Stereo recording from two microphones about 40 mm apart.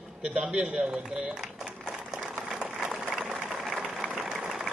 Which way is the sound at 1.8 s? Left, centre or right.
Centre.